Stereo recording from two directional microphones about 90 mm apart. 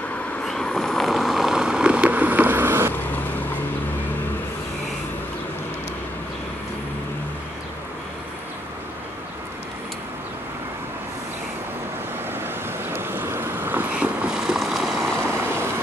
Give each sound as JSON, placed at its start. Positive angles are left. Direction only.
{"t": 0.4, "sound": "vehicle", "side_deg": 5}
{"t": 12.3, "sound": "vehicle", "side_deg": -25}
{"t": 15.1, "sound": "vehicle", "side_deg": -25}